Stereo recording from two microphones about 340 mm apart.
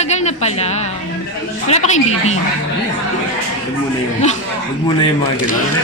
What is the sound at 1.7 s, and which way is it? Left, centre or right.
Speech, centre.